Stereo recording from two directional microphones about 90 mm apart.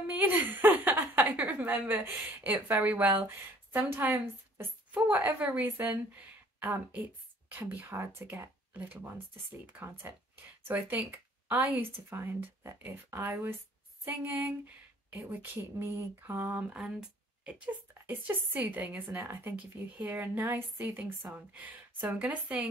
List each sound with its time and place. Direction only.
0.0 s a sound: 20° right (ahead or behind)
2.4 s a woman's voice: 20° right (ahead or behind)
15.1 s a woman's voice: 30° right (ahead or behind)
16.7 s a woman's voice: 10° right (ahead or behind)